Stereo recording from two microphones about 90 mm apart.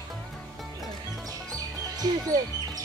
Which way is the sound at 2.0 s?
45° right (ahead or behind).